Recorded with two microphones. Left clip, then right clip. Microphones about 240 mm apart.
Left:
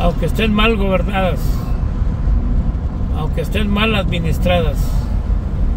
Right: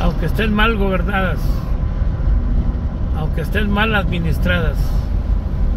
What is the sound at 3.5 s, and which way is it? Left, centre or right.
Speech, centre.